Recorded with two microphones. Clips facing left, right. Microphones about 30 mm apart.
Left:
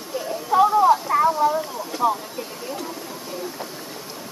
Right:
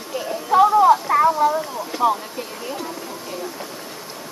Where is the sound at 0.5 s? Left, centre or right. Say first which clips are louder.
Right 3 dB; right.